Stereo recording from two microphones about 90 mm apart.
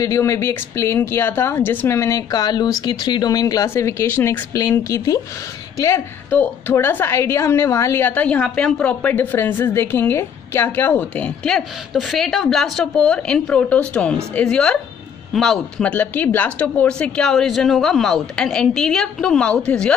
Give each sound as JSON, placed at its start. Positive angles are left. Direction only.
{"t": 0.0, "sound": "a woman's voice", "side_deg": 35}
{"t": 2.3, "sound": "speech", "side_deg": 50}
{"t": 3.7, "sound": "a woman's voice", "side_deg": 30}
{"t": 4.8, "sound": "a woman's voice", "side_deg": 40}
{"t": 11.5, "sound": "speech", "side_deg": 0}
{"t": 15.9, "sound": "speech", "side_deg": 15}